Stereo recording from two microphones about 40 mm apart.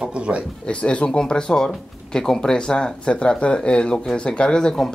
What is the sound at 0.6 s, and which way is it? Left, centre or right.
Speech, left.